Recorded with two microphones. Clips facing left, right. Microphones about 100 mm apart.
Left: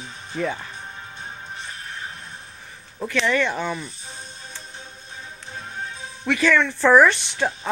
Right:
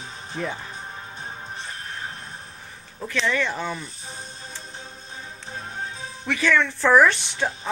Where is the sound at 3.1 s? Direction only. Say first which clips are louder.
Left 3 dB; centre (ahead or behind).